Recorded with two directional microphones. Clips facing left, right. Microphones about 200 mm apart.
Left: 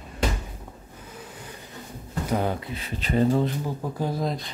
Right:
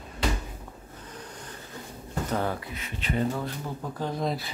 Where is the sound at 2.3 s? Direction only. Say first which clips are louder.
Left 4 dB; 20° left (ahead or behind).